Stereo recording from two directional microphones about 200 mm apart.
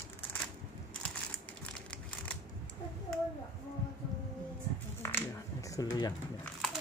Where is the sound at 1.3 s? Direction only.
5° left (ahead or behind).